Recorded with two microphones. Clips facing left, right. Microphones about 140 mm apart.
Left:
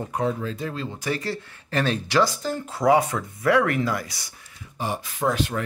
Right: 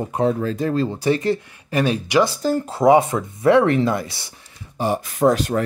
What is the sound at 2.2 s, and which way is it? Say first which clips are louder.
Speech: right 5 dB; 35° right (ahead or behind).